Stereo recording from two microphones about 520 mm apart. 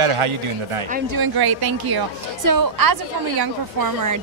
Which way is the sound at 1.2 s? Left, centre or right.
Right.